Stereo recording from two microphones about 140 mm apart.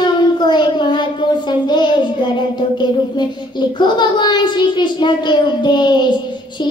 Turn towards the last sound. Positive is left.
turn(degrees=30)  # may be behind; listen again after turning